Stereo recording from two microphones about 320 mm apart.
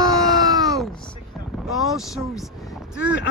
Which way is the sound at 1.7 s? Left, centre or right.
Centre.